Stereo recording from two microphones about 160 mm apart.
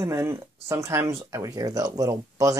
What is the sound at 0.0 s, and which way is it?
Speech, 15° right (ahead or behind).